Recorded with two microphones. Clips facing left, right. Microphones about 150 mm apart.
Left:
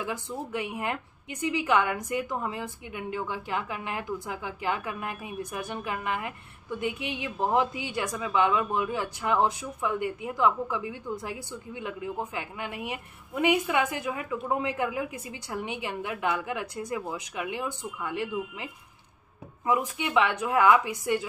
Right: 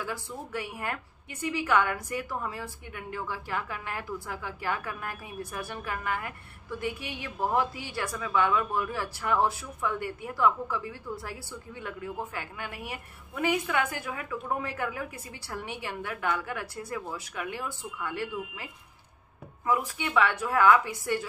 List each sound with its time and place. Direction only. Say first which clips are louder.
0.0 s a woman's voice: left 3 dB; 20° left (ahead or behind)